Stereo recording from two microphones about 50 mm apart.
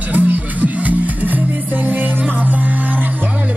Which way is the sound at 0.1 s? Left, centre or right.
Right.